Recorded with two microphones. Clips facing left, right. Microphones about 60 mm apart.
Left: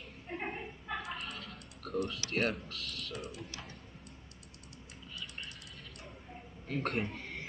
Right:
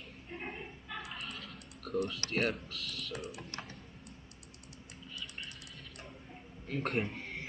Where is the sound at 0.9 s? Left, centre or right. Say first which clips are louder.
Left 4 dB; left.